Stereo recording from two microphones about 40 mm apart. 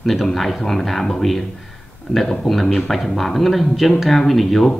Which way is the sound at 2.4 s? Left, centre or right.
Centre.